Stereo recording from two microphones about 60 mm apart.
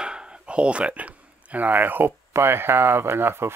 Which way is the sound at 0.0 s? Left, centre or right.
Centre.